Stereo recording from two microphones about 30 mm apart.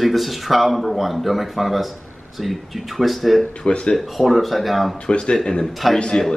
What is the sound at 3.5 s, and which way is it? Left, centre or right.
Speech, left.